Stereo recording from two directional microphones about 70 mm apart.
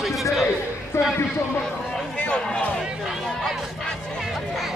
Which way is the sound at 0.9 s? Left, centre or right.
Left.